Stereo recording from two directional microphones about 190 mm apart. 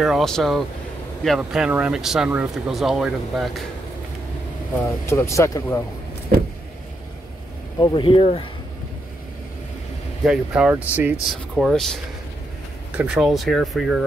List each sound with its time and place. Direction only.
0.0 s speech: centre (ahead or behind)
4.8 s speech: 15° left (ahead or behind)
7.8 s speech: 25° left (ahead or behind)
10.2 s speech: 5° right (ahead or behind)